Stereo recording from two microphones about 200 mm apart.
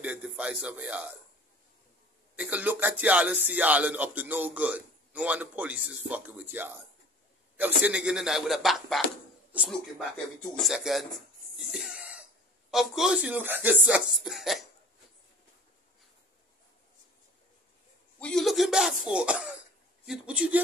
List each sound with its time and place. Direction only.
0.0 s speech: 5° right (ahead or behind)
2.3 s speech: 5° right (ahead or behind)
11.5 s cough: centre (ahead or behind)
12.7 s speech: centre (ahead or behind)
18.2 s speech: centre (ahead or behind)